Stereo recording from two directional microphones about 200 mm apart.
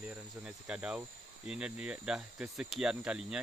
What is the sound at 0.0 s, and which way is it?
Cricket, 5° right (ahead or behind).